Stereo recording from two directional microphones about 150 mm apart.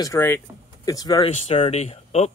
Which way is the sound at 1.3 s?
40° left (ahead or behind).